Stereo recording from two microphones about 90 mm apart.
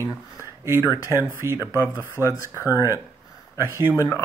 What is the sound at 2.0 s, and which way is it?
Speech, 30° left (ahead or behind).